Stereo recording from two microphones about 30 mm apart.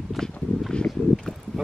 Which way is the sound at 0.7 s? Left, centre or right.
Left.